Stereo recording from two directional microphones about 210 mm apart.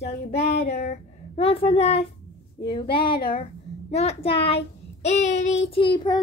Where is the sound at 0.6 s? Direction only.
45° left (ahead or behind).